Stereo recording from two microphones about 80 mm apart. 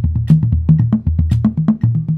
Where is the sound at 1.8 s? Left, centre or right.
Centre.